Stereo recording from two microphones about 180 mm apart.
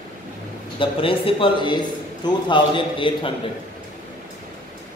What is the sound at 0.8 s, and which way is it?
A man's voice, 30° left (ahead or behind).